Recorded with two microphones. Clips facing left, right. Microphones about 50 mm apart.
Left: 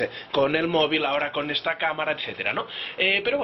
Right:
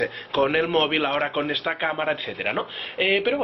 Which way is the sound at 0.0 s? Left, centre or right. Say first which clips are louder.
Right 1 dB; right.